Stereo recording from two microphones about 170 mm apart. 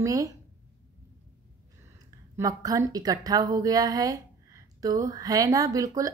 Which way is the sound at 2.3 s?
20° right (ahead or behind).